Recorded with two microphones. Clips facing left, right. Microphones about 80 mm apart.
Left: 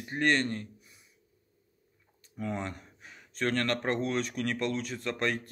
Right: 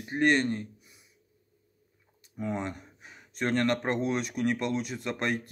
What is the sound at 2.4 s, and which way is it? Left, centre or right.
A man's voice, centre.